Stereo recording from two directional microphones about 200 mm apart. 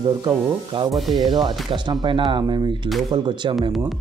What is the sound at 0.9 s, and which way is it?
Speech, centre (ahead or behind).